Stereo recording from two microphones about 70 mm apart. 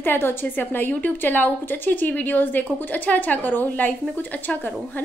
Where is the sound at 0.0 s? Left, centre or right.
Left.